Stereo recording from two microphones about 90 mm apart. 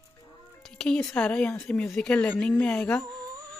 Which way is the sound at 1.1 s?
20° left (ahead or behind).